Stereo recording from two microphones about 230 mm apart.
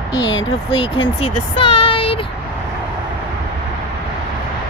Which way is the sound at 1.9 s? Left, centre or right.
Left.